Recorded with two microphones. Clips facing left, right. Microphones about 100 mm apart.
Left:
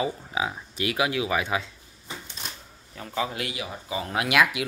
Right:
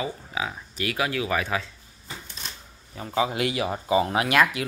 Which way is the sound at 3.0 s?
15° right (ahead or behind).